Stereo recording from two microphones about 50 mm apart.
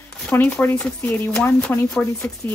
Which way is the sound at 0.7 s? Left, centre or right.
Left.